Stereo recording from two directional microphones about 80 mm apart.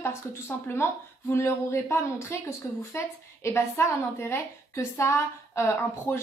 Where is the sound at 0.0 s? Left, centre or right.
Left.